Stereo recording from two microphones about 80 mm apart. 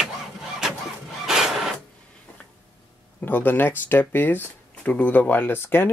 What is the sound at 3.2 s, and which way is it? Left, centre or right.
Speech, left.